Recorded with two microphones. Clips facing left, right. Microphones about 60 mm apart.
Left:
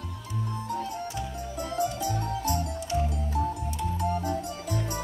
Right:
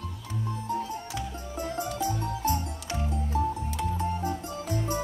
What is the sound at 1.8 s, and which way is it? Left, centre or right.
Music, right.